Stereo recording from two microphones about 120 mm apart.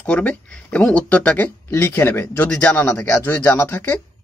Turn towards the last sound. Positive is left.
turn(degrees=15)  # may be behind; listen again after turning